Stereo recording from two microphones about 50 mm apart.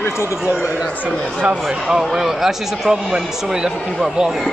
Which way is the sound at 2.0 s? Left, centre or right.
Centre.